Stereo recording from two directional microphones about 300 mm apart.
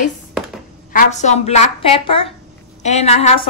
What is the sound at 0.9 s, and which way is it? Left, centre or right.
A woman's voice, left.